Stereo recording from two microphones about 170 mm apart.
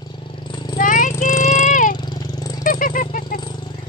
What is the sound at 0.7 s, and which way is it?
Vehicle, 50° left (ahead or behind).